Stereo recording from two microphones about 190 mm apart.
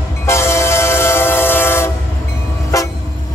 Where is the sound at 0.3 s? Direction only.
15° left (ahead or behind).